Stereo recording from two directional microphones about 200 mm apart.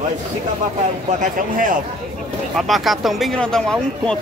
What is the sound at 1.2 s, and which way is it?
Speech, 40° right (ahead or behind).